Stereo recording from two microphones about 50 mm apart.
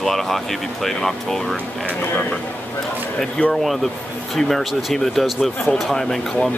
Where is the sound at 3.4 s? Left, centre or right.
Left.